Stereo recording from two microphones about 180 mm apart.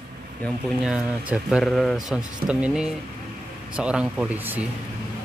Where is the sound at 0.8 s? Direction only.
5° right (ahead or behind).